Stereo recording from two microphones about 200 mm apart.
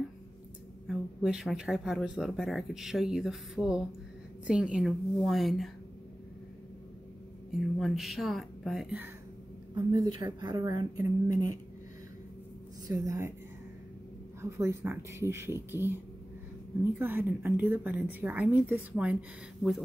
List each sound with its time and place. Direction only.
0.8 s speech: centre (ahead or behind)
7.8 s speech: centre (ahead or behind)
9.8 s a woman's voice: 20° right (ahead or behind)
12.8 s a woman's voice: 20° right (ahead or behind)
14.4 s a woman's voice: 15° right (ahead or behind)